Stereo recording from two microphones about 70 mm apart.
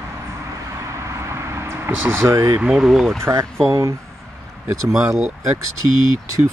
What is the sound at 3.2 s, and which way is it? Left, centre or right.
Speech, right.